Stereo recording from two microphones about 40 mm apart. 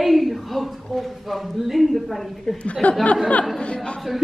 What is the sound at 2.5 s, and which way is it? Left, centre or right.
Speech, left.